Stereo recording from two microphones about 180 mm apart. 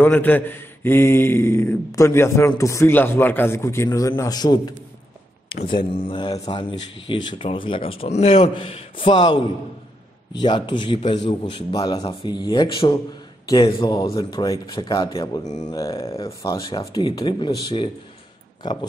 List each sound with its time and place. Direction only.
0.0 s speech: 10° left (ahead or behind)
15.4 s speech: 40° left (ahead or behind)
15.7 s speech: 20° left (ahead or behind)